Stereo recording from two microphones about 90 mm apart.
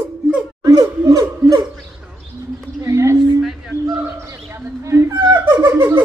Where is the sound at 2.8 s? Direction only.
35° right (ahead or behind).